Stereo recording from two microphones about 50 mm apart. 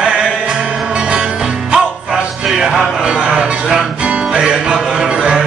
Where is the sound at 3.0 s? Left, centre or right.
Centre.